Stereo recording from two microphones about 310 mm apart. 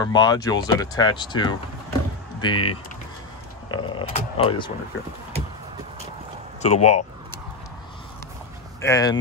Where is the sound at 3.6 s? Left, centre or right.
Centre.